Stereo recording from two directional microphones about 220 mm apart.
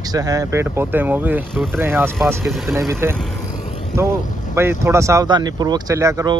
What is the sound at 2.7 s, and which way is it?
Speech, 10° right (ahead or behind).